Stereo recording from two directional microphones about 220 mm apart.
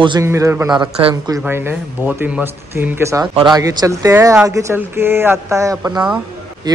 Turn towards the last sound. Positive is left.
turn(degrees=-20)  # may be behind; listen again after turning